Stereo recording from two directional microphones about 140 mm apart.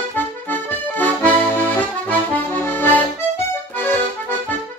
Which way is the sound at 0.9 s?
10° left (ahead or behind).